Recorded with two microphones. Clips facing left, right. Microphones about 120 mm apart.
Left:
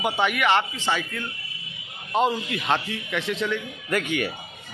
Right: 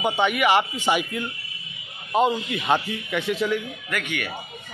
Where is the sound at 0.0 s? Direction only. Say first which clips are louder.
Right 2 dB; centre (ahead or behind).